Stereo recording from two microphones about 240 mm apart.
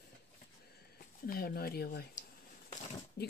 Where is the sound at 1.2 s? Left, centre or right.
Left.